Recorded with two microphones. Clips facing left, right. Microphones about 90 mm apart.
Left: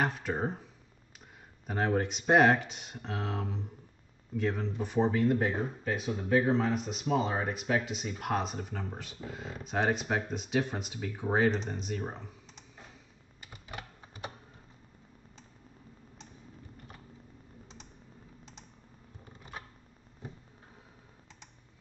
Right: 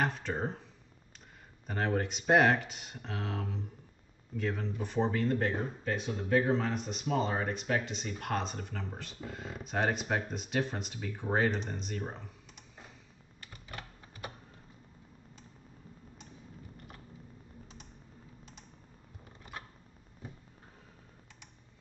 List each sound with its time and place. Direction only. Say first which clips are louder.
0.0 s speech: left 2 dB; 5° left (ahead or behind)
1.7 s speech: left 2 dB; 5° left (ahead or behind)
13.4 s typing: left 2 dB; 15° left (ahead or behind)